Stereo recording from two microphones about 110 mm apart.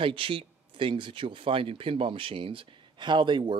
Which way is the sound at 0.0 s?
55° right (ahead or behind).